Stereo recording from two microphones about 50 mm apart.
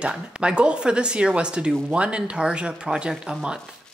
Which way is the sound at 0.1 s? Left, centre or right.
Centre.